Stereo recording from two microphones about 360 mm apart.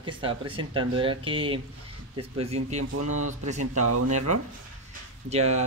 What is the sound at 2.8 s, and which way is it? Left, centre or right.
Speech, right.